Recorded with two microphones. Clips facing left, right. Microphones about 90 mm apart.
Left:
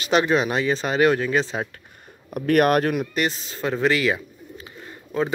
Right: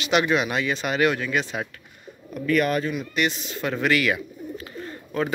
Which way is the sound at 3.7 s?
25° left (ahead or behind).